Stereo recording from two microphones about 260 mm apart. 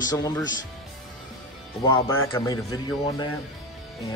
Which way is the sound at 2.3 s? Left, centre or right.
Centre.